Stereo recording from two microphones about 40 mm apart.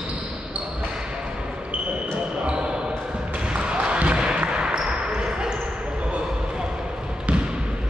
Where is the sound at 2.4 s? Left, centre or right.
Right.